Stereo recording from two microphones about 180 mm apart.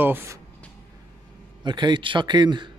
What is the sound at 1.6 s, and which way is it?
A man's voice, 25° right (ahead or behind).